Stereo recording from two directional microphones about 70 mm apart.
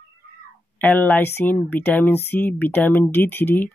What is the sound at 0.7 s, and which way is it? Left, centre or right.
Speech, left.